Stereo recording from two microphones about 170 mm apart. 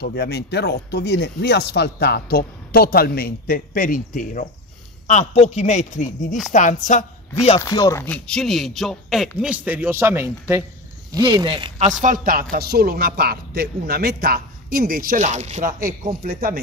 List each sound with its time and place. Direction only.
0.0 s speech: 75° left (ahead or behind); by 4.5 s 50° left (ahead or behind)
5.0 s a man's voice: 40° left (ahead or behind)
7.6 s speech: 20° left (ahead or behind); by 10.3 s 15° right (ahead or behind)
11.1 s speech: 25° right (ahead or behind)
11.8 s a man's voice: 45° right (ahead or behind)